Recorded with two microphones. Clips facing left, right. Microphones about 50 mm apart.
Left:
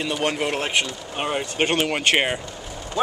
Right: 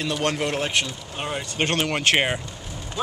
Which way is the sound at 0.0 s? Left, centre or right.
Centre.